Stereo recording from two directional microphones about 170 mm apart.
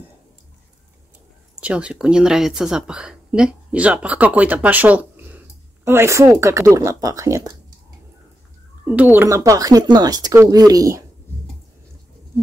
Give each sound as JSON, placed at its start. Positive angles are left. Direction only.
{"t": 1.6, "sound": "speech", "side_deg": -5}
{"t": 8.8, "sound": "speech", "side_deg": -10}